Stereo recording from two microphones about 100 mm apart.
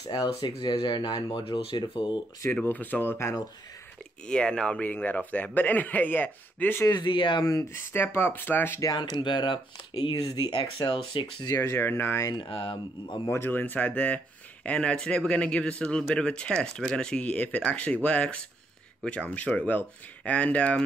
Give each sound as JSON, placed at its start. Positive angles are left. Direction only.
{"t": 0.0, "sound": "speech", "side_deg": 40}
{"t": 2.5, "sound": "speech", "side_deg": 20}
{"t": 4.3, "sound": "speech", "side_deg": 10}
{"t": 6.9, "sound": "speech", "side_deg": 50}
{"t": 7.7, "sound": "speech", "side_deg": 25}
{"t": 8.9, "sound": "speech", "side_deg": 50}
{"t": 11.4, "sound": "speech", "side_deg": 30}
{"t": 12.3, "sound": "speech", "side_deg": 55}
{"t": 13.3, "sound": "speech", "side_deg": 20}